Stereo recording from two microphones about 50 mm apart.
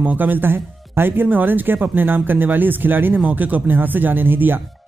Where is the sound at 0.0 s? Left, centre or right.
Right.